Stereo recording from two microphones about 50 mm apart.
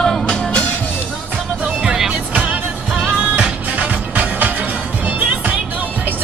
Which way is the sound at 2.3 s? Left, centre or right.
Right.